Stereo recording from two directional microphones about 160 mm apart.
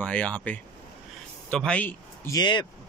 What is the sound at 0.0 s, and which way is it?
Speech, 5° left (ahead or behind).